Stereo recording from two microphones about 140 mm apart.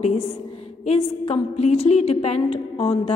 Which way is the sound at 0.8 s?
45° left (ahead or behind).